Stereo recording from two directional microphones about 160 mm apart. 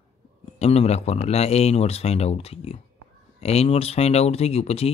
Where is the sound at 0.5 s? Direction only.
40° left (ahead or behind).